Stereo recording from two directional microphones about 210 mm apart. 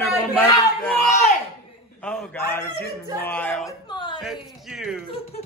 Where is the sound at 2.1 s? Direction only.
10° left (ahead or behind).